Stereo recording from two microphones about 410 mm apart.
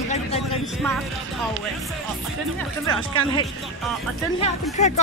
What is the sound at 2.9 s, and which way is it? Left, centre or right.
Speech, centre.